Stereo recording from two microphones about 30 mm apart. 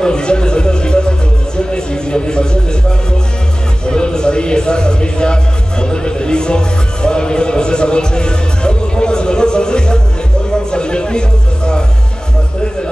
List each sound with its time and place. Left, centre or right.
0.0 s music: left
1.7 s speech: left
3.8 s a man's voice: left